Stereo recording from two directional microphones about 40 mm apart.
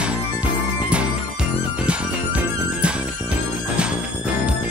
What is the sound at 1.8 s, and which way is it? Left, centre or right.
Music, right.